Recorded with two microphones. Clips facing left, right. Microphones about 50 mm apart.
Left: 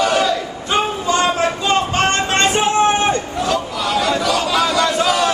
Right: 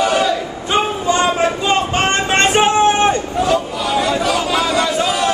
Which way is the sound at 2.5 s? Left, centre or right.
Right.